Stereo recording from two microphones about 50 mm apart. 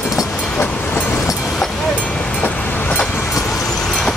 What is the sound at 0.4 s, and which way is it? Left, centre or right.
Vehicle, left.